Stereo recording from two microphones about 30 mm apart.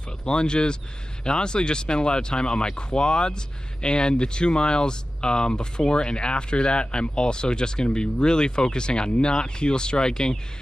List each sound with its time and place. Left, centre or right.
0.2 s speech: left